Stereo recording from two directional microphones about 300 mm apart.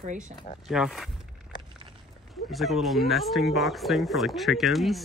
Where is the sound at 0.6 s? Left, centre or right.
Centre.